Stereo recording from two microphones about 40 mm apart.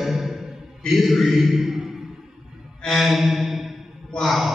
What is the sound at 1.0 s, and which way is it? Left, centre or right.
Speech, centre.